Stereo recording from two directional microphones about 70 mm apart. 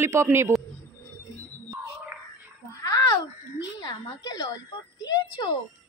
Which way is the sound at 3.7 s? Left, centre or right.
Left.